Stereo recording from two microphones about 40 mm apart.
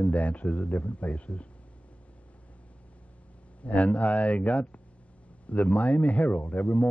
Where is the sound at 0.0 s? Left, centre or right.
Left.